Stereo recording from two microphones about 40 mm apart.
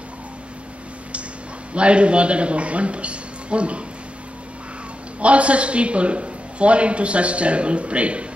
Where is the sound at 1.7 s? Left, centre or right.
Right.